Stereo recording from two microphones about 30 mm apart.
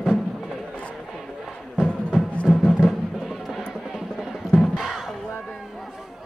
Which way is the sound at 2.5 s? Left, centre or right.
Centre.